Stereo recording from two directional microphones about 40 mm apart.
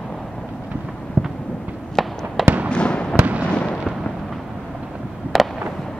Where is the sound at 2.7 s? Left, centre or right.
Left.